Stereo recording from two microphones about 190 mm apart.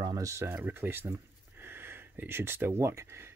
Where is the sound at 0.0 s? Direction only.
20° right (ahead or behind).